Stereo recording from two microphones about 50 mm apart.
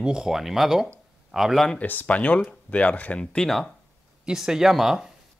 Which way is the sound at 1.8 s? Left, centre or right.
Left.